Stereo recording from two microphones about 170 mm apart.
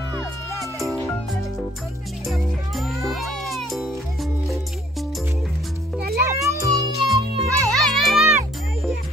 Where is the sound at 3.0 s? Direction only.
Centre (ahead or behind).